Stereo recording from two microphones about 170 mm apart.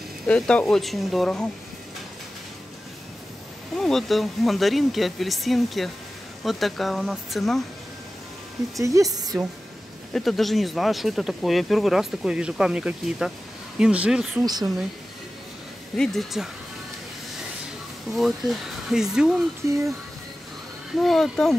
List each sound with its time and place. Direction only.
0.3 s speech: 5° left (ahead or behind)
3.7 s speech: centre (ahead or behind)
8.7 s a woman's voice: 20° right (ahead or behind)
10.1 s speech: centre (ahead or behind)
14.4 s a woman's voice: 25° right (ahead or behind)
16.0 s speech: centre (ahead or behind)
18.1 s speech: centre (ahead or behind)
21.0 s speech: centre (ahead or behind)